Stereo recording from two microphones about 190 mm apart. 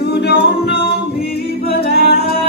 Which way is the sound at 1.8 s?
55° left (ahead or behind).